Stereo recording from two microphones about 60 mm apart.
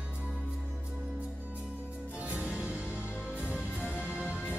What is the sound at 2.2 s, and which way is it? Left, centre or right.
Music, right.